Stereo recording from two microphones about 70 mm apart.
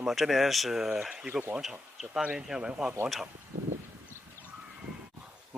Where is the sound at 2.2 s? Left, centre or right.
Centre.